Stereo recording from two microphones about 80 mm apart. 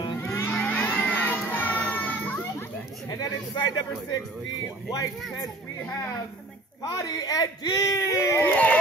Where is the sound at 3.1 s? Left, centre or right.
Left.